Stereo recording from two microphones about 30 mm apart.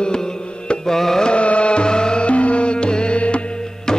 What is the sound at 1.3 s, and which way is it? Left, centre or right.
Music, left.